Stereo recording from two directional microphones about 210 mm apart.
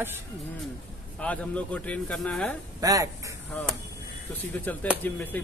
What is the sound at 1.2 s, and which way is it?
A man's voice, 5° left (ahead or behind).